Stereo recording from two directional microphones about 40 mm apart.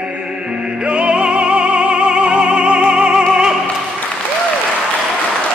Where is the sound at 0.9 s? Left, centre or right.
Right.